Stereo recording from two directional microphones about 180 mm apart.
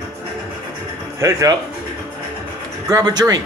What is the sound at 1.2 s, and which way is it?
Speech, 20° right (ahead or behind).